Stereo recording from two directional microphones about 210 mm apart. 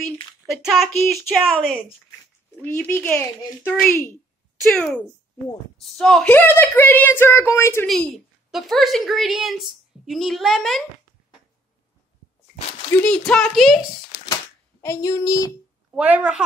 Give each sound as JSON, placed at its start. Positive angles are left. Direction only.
{"t": 0.5, "sound": "a woman's voice", "side_deg": 0}
{"t": 2.6, "sound": "a woman's voice", "side_deg": 5}
{"t": 7.8, "sound": "a woman's voice", "side_deg": 0}
{"t": 12.9, "sound": "a woman's voice", "side_deg": 5}
{"t": 14.8, "sound": "speech", "side_deg": 15}
{"t": 15.9, "sound": "a woman's voice", "side_deg": -5}